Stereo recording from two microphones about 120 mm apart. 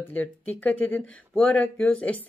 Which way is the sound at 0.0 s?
15° left (ahead or behind).